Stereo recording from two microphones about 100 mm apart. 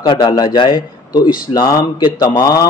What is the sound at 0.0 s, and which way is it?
Speech, 55° left (ahead or behind).